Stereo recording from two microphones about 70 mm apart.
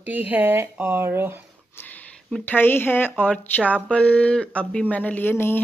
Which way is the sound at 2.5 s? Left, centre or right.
Left.